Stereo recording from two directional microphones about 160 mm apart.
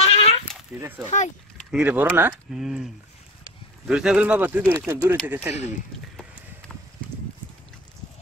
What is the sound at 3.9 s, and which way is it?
Speech, 5° right (ahead or behind).